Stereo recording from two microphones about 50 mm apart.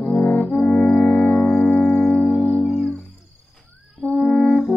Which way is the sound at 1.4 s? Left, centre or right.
Centre.